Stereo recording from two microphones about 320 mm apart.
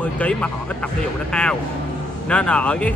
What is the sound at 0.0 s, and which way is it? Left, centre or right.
A man's voice, centre.